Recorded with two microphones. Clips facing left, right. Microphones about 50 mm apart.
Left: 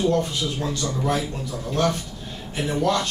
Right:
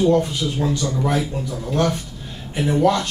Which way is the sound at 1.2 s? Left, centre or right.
Centre.